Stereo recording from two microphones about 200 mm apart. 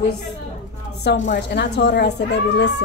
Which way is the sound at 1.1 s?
60° left (ahead or behind).